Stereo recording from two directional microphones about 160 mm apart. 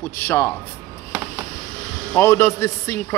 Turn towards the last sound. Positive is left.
turn(degrees=20)  # may be behind; listen again after turning